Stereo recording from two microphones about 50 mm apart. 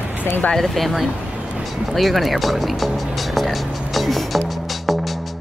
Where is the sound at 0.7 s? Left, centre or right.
Centre.